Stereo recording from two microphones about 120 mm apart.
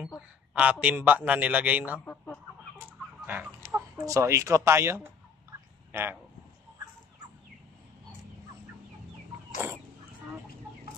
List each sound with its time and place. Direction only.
0.6 s a man's voice: 10° right (ahead or behind)
2.0 s chicken: 15° left (ahead or behind)
3.3 s chicken: 15° right (ahead or behind)
4.0 s speech: 25° right (ahead or behind)
5.9 s a sound: 20° right (ahead or behind)